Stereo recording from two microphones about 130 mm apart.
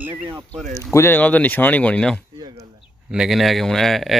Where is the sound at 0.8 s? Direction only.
20° left (ahead or behind).